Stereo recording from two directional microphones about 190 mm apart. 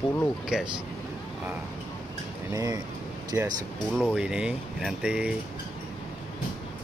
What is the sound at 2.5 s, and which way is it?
Speech, 20° right (ahead or behind).